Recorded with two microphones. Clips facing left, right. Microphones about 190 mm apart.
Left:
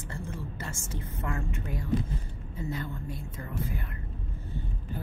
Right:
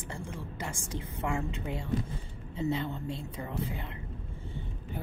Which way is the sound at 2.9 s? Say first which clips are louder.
Right 2 dB; 25° right (ahead or behind).